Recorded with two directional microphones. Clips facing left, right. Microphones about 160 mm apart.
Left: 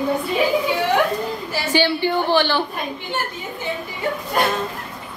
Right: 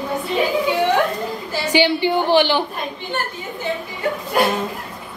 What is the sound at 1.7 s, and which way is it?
Speech, 15° right (ahead or behind).